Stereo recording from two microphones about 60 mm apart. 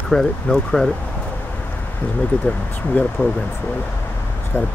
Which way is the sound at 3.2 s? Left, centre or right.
Left.